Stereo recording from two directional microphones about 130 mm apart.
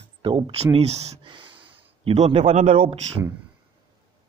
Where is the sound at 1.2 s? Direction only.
40° right (ahead or behind).